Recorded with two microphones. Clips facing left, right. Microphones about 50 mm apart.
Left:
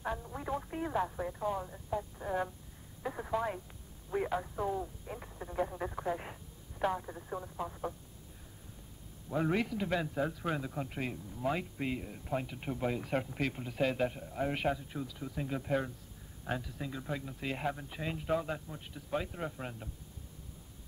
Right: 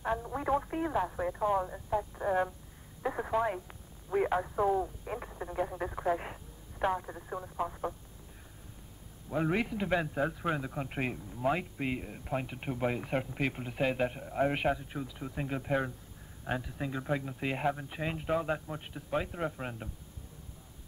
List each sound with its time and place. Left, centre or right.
0.0 s speech: right
9.3 s speech: centre
10.9 s speech: right
11.3 s speech: centre